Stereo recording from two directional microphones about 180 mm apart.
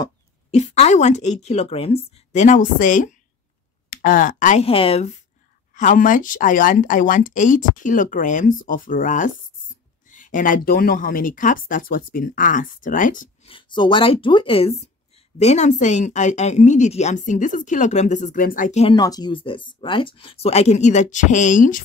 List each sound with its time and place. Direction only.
0.5 s speech: 35° left (ahead or behind)
4.6 s speech: 30° left (ahead or behind)
5.7 s speech: 45° left (ahead or behind)
13.5 s speech: 25° left (ahead or behind)
18.9 s speech: 20° left (ahead or behind); by 21.8 s 45° left (ahead or behind)